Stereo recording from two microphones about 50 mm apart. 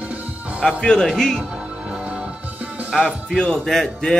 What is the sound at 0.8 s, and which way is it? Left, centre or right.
Music, centre.